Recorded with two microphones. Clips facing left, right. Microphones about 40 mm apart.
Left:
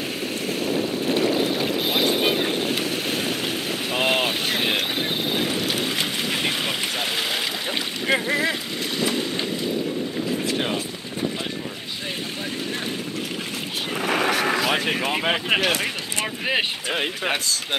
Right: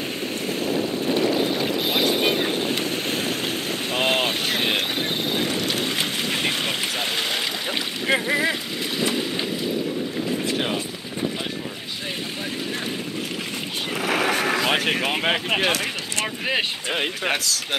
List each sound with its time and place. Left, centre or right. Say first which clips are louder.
0.5 s boat: even; centre
8.1 s vehicle: right 1 dB; centre
14.0 s vehicle: even; centre
16.4 s a sound: left 2 dB; centre
17.0 s speech: right 1 dB; centre